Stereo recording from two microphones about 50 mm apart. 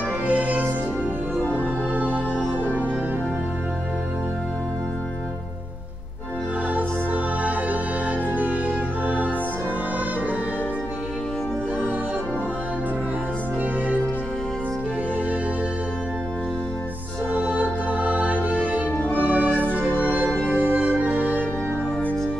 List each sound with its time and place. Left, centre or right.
0.3 s music: right
7.4 s music: right
17.3 s music: right
20.4 s music: left
21.1 s music: right